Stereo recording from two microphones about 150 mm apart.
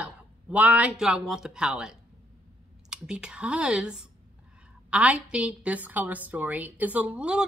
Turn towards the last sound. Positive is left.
turn(degrees=-5)  # may be behind; listen again after turning